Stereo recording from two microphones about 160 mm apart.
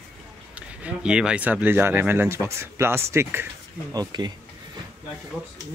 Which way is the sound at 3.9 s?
25° right (ahead or behind).